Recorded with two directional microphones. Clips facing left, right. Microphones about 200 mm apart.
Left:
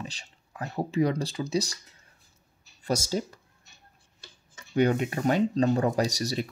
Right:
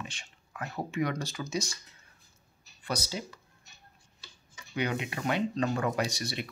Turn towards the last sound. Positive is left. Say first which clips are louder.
# left 5 dB
turn(degrees=40)  # may be behind; listen again after turning